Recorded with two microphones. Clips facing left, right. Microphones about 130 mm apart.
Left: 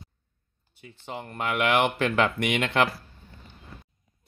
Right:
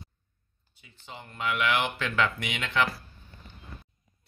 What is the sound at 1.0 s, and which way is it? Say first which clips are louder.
Speech: left 2 dB; 55° left (ahead or behind).